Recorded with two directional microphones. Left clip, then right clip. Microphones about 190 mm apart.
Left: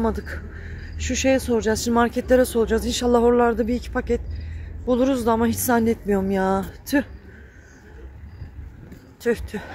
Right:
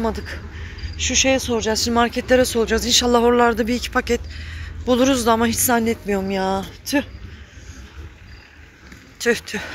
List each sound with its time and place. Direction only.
0.0 s speech: 25° left (ahead or behind)
9.2 s speech: 10° left (ahead or behind)